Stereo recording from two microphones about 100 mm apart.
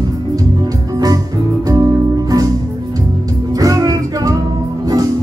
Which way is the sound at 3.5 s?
35° right (ahead or behind).